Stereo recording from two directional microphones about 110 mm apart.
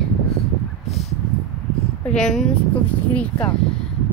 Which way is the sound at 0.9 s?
75° left (ahead or behind).